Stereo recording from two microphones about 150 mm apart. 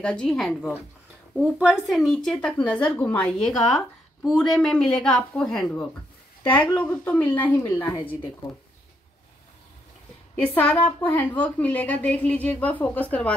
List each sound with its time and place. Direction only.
0.0 s a woman's voice: 5° left (ahead or behind)
7.6 s speech: 20° left (ahead or behind)
10.5 s a woman's voice: 10° left (ahead or behind)